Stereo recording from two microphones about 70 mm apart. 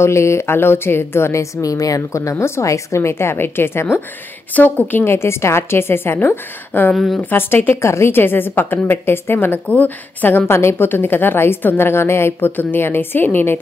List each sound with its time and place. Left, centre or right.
0.0 s a woman's voice: left
4.6 s a woman's voice: left
5.0 s a woman's voice: left